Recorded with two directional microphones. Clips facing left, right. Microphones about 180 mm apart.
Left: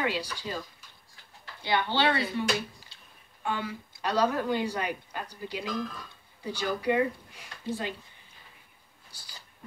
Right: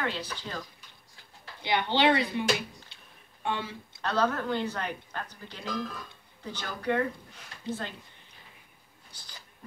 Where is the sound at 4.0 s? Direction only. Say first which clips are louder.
Left 1 dB; 10° left (ahead or behind).